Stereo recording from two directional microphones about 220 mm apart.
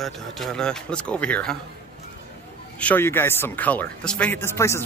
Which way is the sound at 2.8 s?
10° left (ahead or behind).